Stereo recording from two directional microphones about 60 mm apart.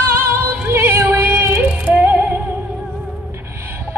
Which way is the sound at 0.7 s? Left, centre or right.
Right.